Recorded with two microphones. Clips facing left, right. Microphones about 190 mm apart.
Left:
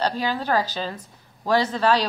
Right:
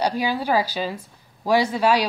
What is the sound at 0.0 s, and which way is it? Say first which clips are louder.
A woman's voice: right 2 dB; 10° right (ahead or behind).